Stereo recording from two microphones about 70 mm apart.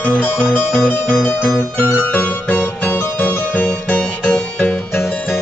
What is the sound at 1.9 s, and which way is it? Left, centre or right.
Music, left.